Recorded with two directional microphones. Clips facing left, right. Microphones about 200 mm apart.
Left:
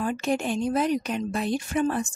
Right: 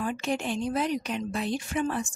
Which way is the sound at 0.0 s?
45° left (ahead or behind).